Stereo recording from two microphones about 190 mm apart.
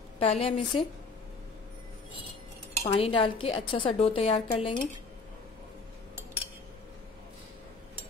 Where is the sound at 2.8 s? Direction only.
30° left (ahead or behind).